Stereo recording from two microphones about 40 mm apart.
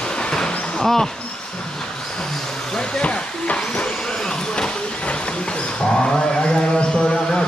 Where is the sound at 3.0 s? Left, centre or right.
Left.